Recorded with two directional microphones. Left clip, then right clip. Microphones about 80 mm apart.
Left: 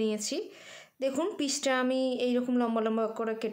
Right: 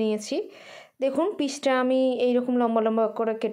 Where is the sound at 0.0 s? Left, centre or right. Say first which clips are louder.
Right 5 dB; right.